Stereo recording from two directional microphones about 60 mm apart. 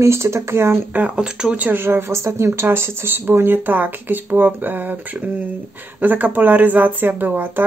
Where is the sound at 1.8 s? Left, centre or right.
Right.